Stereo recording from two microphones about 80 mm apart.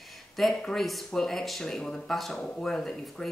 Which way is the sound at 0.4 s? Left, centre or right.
Centre.